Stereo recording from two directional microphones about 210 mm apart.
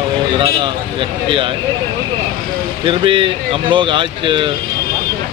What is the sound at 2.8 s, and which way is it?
Speech, 25° right (ahead or behind).